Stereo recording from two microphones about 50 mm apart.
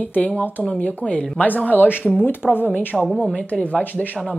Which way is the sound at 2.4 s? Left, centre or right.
Centre.